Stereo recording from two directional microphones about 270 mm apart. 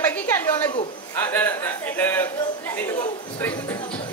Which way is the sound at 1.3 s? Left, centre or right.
Centre.